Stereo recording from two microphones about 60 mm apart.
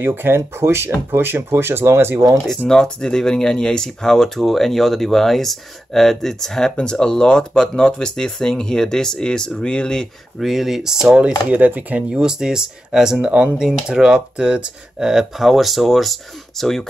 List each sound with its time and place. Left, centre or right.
0.0 s speech: right
2.7 s speech: centre
10.4 s speech: centre
11.5 s speech: right
12.1 s speech: centre